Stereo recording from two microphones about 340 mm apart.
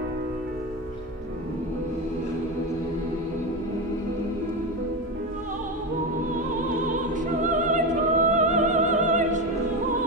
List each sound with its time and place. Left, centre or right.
7.7 s opera: right